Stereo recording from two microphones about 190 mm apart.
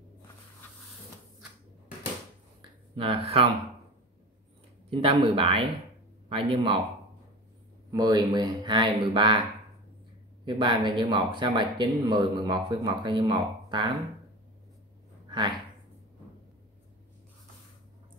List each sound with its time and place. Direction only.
3.0 s speech: 30° right (ahead or behind)
5.1 s speech: 30° right (ahead or behind)
7.9 s speech: 20° right (ahead or behind)
10.4 s speech: 25° right (ahead or behind)
15.2 s a sound: 25° right (ahead or behind)